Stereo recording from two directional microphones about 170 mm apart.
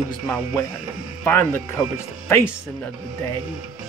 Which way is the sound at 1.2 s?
15° left (ahead or behind).